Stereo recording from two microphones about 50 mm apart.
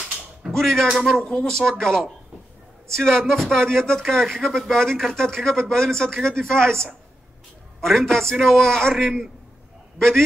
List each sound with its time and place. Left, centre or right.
0.5 s speech: centre
0.8 s speech: centre
1.2 s a man's voice: centre